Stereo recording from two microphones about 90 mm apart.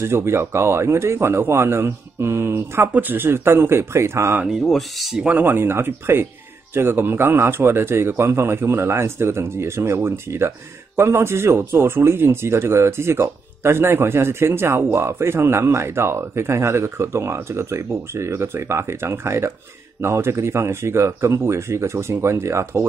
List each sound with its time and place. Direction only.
0.0 s a man's voice: 30° right (ahead or behind)
4.5 s speech: centre (ahead or behind)
5.2 s a man's voice: 15° right (ahead or behind)